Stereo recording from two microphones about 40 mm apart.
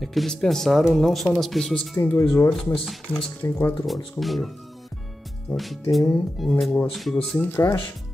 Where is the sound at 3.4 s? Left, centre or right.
Left.